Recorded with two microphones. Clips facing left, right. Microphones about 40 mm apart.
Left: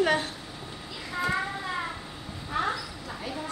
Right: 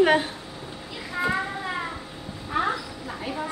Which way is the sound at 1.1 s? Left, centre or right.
Centre.